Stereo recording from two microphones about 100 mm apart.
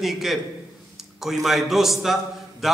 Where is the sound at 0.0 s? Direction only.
Centre (ahead or behind).